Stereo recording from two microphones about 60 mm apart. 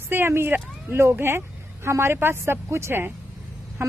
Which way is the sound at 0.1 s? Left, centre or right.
Right.